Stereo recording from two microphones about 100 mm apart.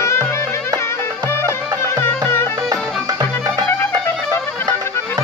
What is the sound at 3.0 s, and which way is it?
Music, 40° right (ahead or behind).